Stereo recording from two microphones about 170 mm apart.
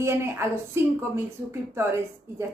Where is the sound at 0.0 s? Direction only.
15° right (ahead or behind).